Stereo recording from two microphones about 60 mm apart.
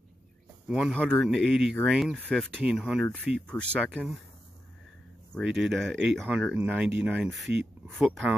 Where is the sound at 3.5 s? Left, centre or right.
Centre.